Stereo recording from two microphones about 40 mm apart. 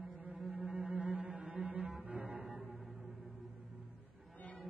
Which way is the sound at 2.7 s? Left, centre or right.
Centre.